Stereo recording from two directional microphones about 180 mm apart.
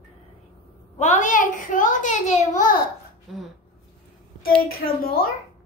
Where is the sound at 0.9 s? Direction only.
40° left (ahead or behind).